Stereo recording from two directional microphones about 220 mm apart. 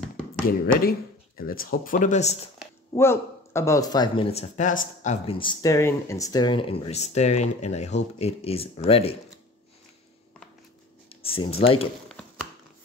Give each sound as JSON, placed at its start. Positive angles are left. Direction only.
{"t": 0.5, "sound": "speech", "side_deg": 40}
{"t": 2.9, "sound": "speech", "side_deg": 10}
{"t": 11.1, "sound": "speech", "side_deg": 25}